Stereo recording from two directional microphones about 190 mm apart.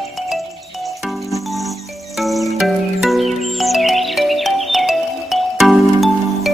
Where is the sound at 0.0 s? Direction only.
Centre (ahead or behind).